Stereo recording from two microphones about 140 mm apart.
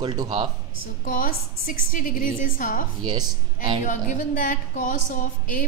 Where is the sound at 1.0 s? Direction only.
80° left.